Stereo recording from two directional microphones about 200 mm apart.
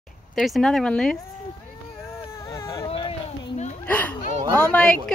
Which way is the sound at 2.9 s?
30° left (ahead or behind).